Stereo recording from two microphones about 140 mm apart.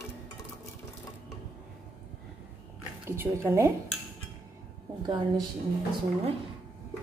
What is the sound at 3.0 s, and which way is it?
Speech, 15° right (ahead or behind).